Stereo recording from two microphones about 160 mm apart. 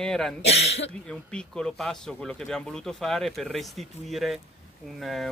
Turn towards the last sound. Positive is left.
turn(degrees=0)  # may be behind; listen again after turning